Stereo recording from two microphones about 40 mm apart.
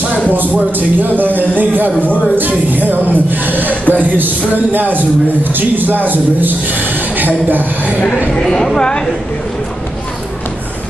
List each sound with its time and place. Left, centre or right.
0.3 s a man's voice: right
2.0 s speech: left
2.3 s a man's voice: right
8.4 s a woman's voice: centre